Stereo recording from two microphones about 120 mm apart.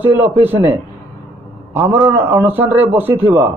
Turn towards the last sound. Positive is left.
turn(degrees=-15)  # may be behind; listen again after turning